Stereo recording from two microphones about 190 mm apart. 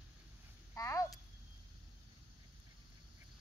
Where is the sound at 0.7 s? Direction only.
15° left (ahead or behind).